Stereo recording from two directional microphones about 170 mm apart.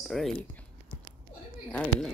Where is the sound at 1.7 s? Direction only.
5° left (ahead or behind).